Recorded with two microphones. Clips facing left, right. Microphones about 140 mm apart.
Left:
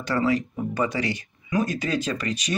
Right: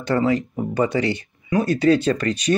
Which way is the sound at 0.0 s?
25° right (ahead or behind).